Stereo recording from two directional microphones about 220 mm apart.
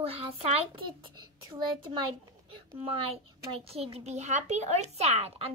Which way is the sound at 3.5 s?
25° right (ahead or behind).